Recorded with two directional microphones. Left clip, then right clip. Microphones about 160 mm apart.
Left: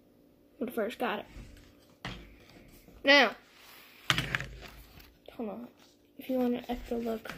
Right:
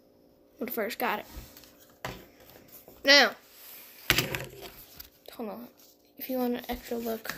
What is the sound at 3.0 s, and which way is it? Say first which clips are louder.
Speech: right 2 dB; 5° left (ahead or behind).